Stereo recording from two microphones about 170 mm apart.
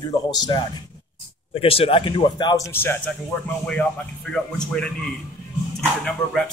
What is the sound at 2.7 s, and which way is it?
A man's voice, 15° left (ahead or behind).